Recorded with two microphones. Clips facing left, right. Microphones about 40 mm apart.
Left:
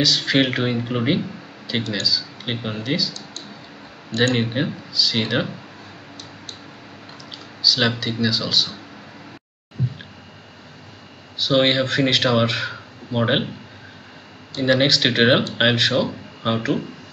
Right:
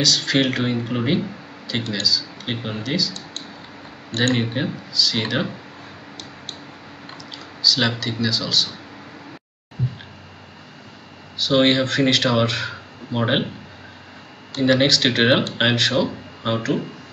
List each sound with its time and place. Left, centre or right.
0.0 s speech: centre
1.8 s speech: left
2.0 s speech: centre
3.1 s a sound: right
4.4 s speech: centre
7.6 s speech: centre
11.3 s speech: centre
14.6 s speech: centre